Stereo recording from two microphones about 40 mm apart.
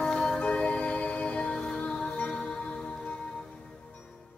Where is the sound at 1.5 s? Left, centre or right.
Centre.